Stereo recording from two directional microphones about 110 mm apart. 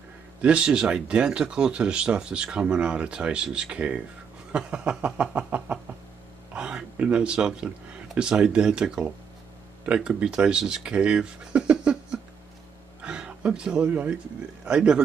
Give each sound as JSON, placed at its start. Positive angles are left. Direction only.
{"t": 0.4, "sound": "speech", "side_deg": -10}